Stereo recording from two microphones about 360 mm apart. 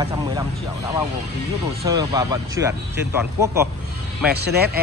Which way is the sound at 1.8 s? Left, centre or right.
Centre.